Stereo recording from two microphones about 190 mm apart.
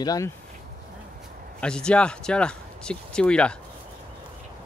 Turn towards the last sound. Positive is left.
turn(degrees=5)  # may be behind; listen again after turning